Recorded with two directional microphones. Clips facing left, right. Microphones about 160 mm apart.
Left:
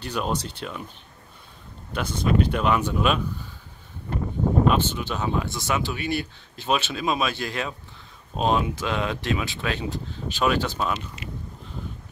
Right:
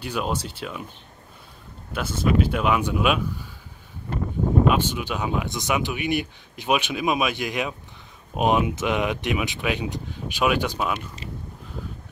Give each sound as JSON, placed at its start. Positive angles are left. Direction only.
{"t": 0.0, "sound": "speech", "side_deg": -5}
{"t": 1.9, "sound": "speech", "side_deg": -5}
{"t": 4.6, "sound": "speech", "side_deg": -10}